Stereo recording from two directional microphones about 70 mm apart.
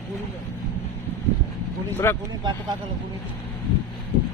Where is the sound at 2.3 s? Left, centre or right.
Right.